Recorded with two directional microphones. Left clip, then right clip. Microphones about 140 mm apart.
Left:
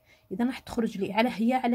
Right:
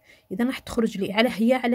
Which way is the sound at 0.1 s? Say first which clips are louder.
Right 4 dB; 45° right (ahead or behind).